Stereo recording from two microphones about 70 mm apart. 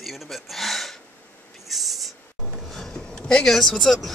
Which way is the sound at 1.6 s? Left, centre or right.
Centre.